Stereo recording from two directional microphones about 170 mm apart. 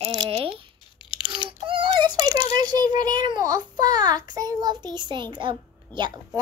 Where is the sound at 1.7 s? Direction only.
30° right (ahead or behind).